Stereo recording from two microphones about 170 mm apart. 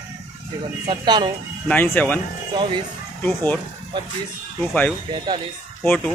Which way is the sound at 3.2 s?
10° left (ahead or behind).